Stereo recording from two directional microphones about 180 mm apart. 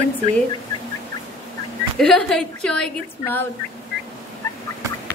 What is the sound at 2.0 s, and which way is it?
A woman's voice, 5° left (ahead or behind).